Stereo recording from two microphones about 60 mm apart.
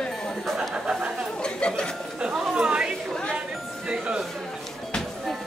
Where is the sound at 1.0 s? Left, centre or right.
Centre.